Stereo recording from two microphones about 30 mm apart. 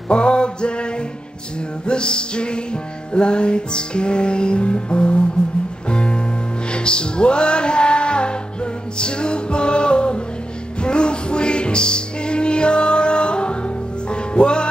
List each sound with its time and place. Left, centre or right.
0.1 s male singing: left
1.9 s music: left